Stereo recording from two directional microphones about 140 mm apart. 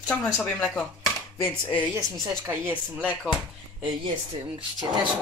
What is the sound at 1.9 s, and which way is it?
Speech, 20° right (ahead or behind).